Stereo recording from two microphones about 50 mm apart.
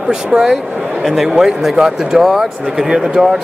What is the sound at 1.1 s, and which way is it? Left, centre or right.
A man's voice, centre.